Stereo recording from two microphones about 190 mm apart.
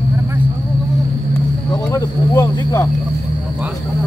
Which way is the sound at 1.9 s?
15° left (ahead or behind).